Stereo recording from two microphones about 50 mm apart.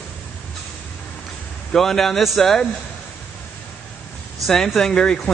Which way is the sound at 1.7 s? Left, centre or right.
Centre.